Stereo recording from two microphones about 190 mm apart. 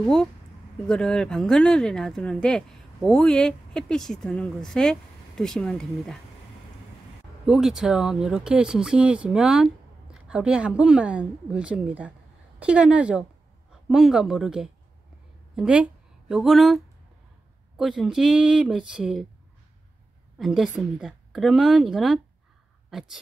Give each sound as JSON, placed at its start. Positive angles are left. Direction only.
{"t": 0.0, "sound": "speech", "side_deg": 5}
{"t": 7.4, "sound": "speech", "side_deg": -5}
{"t": 20.3, "sound": "speech", "side_deg": 0}